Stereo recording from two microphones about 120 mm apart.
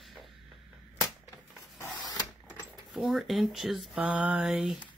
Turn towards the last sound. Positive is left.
turn(degrees=-5)  # may be behind; listen again after turning